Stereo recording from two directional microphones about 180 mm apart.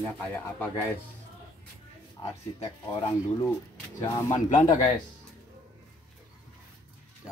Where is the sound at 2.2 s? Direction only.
30° left (ahead or behind).